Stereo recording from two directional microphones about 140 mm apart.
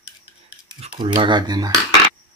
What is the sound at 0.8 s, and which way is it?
Speech, 35° right (ahead or behind).